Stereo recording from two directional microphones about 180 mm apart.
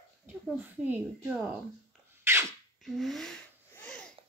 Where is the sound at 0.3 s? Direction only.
10° right (ahead or behind).